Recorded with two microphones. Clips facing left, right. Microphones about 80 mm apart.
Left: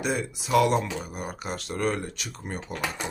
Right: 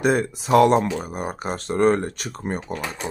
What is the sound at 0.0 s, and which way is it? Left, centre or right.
Speech, right.